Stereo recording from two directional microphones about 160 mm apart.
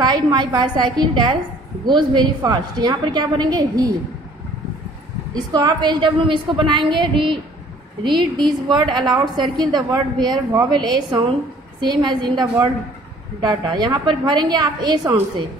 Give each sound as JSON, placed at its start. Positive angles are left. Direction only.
{"t": 0.0, "sound": "a woman's voice", "side_deg": -25}
{"t": 5.3, "sound": "a woman's voice", "side_deg": -25}